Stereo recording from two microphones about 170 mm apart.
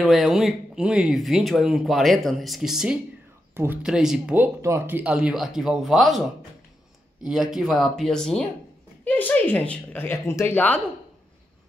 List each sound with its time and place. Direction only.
0.0 s speech: centre (ahead or behind)
7.2 s speech: 5° right (ahead or behind)